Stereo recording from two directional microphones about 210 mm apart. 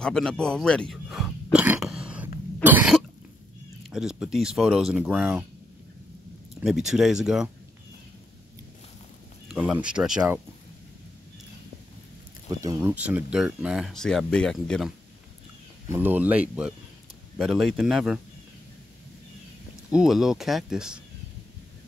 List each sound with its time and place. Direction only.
0.0 s speech: 5° left (ahead or behind)
2.6 s cough: 5° right (ahead or behind)
3.9 s speech: centre (ahead or behind)
6.6 s speech: centre (ahead or behind)
9.5 s speech: 5° right (ahead or behind)
12.4 s speech: 15° right (ahead or behind); by 14.9 s centre (ahead or behind)
15.9 s speech: 10° right (ahead or behind)
19.9 s speech: centre (ahead or behind)